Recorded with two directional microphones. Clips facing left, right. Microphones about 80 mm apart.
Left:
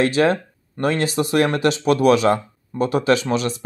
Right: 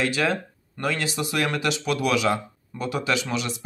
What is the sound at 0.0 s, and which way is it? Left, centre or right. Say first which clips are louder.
Speech: left 7 dB; left.